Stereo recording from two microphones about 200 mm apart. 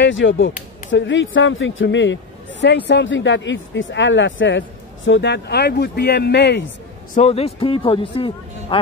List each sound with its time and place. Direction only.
0.0 s a man's voice: 65° left (ahead or behind)
7.2 s speech: 30° left (ahead or behind)